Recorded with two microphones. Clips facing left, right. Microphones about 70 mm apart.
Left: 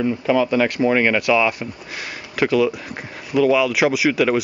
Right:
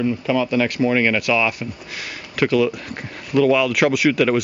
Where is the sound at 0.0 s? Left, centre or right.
Centre.